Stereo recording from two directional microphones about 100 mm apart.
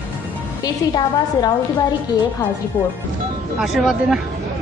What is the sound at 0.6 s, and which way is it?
Speech, 45° left (ahead or behind).